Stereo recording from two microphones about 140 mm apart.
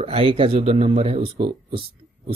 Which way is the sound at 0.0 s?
40° right (ahead or behind).